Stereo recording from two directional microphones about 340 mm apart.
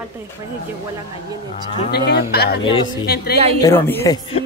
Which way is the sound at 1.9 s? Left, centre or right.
Left.